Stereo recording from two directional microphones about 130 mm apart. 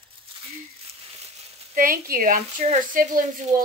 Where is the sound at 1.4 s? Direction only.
75° right (ahead or behind); by 2.4 s 90° right.